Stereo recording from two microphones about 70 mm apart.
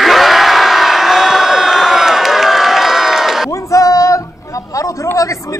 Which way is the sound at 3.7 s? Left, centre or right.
Left.